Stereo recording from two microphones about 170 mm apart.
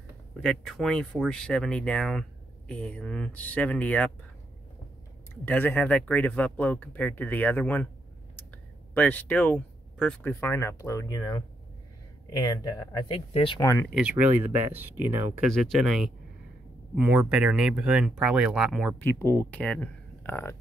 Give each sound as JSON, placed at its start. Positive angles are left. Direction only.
{"t": 0.4, "sound": "speech", "side_deg": 5}
{"t": 5.3, "sound": "speech", "side_deg": 10}
{"t": 8.9, "sound": "speech", "side_deg": 10}
{"t": 13.3, "sound": "speech", "side_deg": 35}
{"t": 13.6, "sound": "speech", "side_deg": 15}
{"t": 13.8, "sound": "speech", "side_deg": -5}
{"t": 15.5, "sound": "speech", "side_deg": 0}
{"t": 18.9, "sound": "speech", "side_deg": 15}